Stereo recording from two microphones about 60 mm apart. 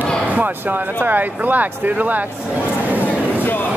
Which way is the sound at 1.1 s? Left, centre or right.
Right.